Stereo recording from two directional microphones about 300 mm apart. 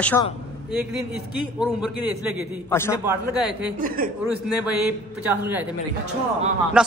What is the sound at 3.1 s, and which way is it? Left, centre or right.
Speech, centre.